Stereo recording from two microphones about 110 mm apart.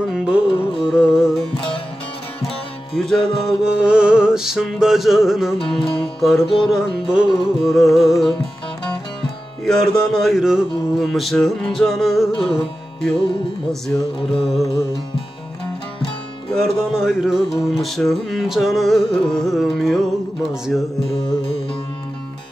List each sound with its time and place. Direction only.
0.1 s music: 5° right (ahead or behind)
1.5 s music: 50° left (ahead or behind)
3.0 s music: 5° left (ahead or behind)
5.6 s music: 55° left (ahead or behind)
5.9 s music: centre (ahead or behind)
6.4 s music: 55° left (ahead or behind)
6.7 s music: 5° right (ahead or behind)
9.7 s music: 5° left (ahead or behind)
12.4 s music: 55° left (ahead or behind)
13.7 s music: 5° left (ahead or behind)
16.4 s music: centre (ahead or behind)
21.0 s music: 55° left (ahead or behind)